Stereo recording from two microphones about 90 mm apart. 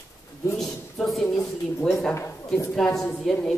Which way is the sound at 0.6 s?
Centre (ahead or behind).